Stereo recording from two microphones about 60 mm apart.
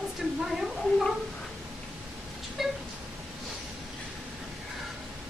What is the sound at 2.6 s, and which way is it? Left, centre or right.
Speech, centre.